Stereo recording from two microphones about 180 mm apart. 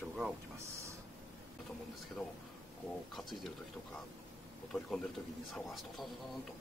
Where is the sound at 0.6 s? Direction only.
15° right (ahead or behind).